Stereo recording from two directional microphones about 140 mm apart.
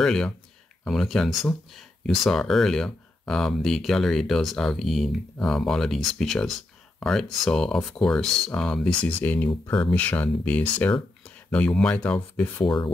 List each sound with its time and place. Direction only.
0.0 s speech: 5° left (ahead or behind)
12.6 s speech: 35° left (ahead or behind)